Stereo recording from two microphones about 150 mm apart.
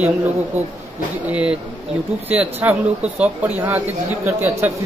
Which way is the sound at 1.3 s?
10° right (ahead or behind).